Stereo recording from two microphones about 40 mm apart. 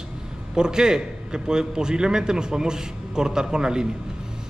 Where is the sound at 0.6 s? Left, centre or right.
Centre.